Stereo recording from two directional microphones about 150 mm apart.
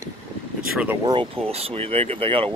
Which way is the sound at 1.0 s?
30° right (ahead or behind).